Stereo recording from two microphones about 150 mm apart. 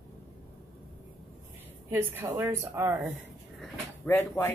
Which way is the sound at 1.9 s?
15° right (ahead or behind).